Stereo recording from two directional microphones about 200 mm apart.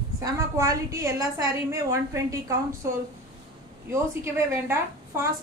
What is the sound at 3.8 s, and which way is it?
A woman's voice, 15° right (ahead or behind).